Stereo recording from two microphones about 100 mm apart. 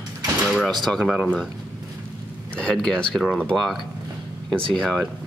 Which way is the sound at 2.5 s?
10° left (ahead or behind).